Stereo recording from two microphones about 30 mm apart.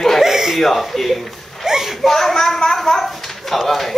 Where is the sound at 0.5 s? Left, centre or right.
Centre.